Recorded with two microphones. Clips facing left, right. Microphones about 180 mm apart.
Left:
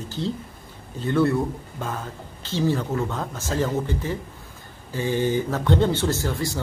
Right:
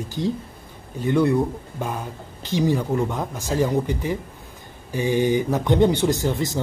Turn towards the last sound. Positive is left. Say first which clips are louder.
# right 3 dB
turn(degrees=-20)  # may be behind; listen again after turning